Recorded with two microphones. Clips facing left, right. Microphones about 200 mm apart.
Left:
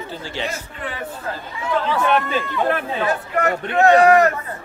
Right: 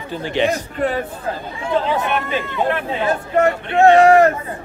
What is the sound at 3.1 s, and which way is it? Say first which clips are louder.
Speech: right 5 dB; 25° right (ahead or behind).